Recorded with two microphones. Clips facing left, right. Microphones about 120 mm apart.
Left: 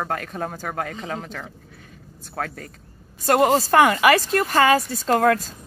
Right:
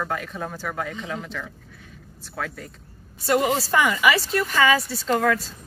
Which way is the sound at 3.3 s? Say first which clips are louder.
Left 4 dB; 50° left (ahead or behind).